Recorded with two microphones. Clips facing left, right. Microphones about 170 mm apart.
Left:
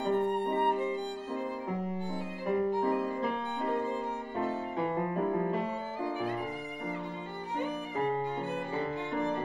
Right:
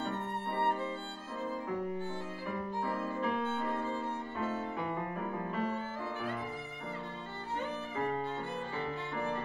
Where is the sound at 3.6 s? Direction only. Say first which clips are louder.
Left 4 dB; 15° left (ahead or behind).